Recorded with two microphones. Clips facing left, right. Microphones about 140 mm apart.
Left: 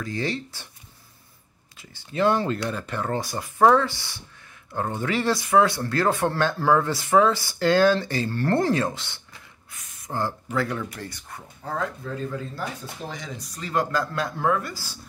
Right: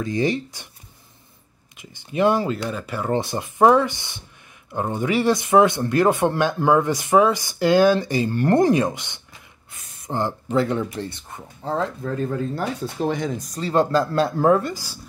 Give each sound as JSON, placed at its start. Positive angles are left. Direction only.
{"t": 0.0, "sound": "speech", "side_deg": -15}
{"t": 1.8, "sound": "speech", "side_deg": -15}
{"t": 3.1, "sound": "speech", "side_deg": -20}
{"t": 12.5, "sound": "speech", "side_deg": -60}
{"t": 13.6, "sound": "speech", "side_deg": -30}
{"t": 14.6, "sound": "speech", "side_deg": -15}